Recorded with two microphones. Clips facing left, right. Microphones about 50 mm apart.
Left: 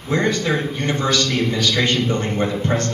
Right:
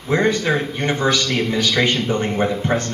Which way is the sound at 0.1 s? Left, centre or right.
Centre.